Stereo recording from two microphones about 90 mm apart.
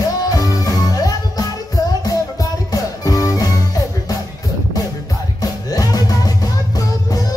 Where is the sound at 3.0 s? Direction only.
40° left (ahead or behind).